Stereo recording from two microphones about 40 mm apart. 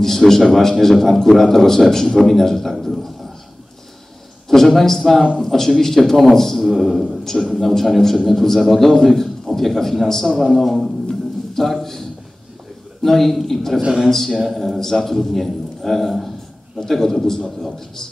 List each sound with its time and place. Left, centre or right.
0.0 s a man's voice: centre
2.8 s a sound: centre
4.5 s a man's voice: centre
7.6 s a man's voice: centre
11.5 s a sound: centre
13.0 s a man's voice: centre
13.7 s a man's voice: right
14.1 s a man's voice: centre
14.4 s a man's voice: centre
14.8 s a man's voice: centre